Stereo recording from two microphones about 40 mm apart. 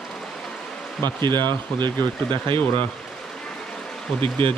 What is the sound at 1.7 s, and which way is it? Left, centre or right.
Speech, centre.